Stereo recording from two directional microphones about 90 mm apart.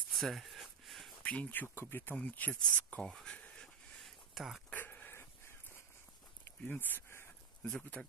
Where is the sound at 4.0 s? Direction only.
Centre (ahead or behind).